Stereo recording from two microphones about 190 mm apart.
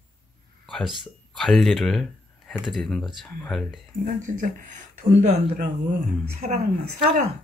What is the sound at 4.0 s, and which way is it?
Speech, 40° right (ahead or behind).